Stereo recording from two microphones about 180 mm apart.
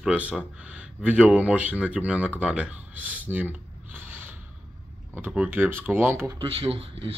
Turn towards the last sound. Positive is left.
turn(degrees=-30)  # may be behind; listen again after turning